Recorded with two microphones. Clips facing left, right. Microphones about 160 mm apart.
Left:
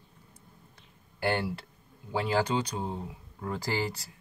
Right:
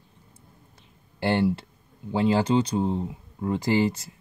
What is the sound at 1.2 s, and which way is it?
Speech, 25° right (ahead or behind).